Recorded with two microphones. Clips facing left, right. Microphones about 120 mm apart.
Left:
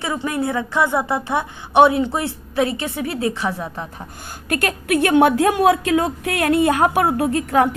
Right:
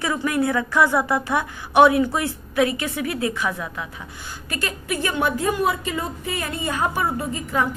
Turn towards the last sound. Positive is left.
turn(degrees=65)  # may be behind; listen again after turning